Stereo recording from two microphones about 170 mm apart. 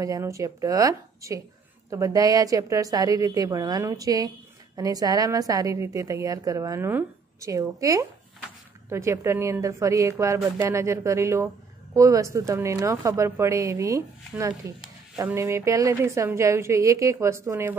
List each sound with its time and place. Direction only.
0.0 s a woman's voice: 20° right (ahead or behind)